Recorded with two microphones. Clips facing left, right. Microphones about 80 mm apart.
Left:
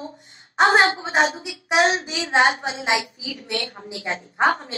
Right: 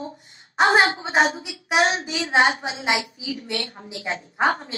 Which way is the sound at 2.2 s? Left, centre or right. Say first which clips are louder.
Left 1 dB; left.